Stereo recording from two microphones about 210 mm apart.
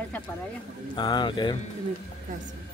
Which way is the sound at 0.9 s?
20° left (ahead or behind).